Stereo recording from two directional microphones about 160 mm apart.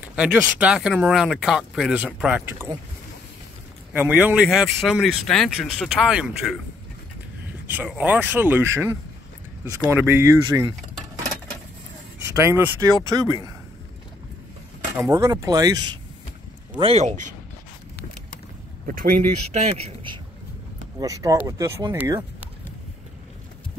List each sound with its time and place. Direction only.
0.1 s speech: 10° right (ahead or behind)
3.9 s speech: 10° right (ahead or behind)
7.6 s speech: 10° right (ahead or behind)
12.4 s speech: 15° right (ahead or behind)
15.0 s speech: 20° right (ahead or behind)
16.7 s speech: 40° right (ahead or behind)
18.9 s speech: 60° right (ahead or behind)
21.0 s speech: 20° right (ahead or behind)